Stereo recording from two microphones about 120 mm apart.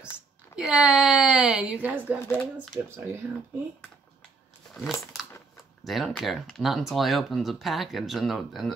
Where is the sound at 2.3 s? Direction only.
5° left (ahead or behind).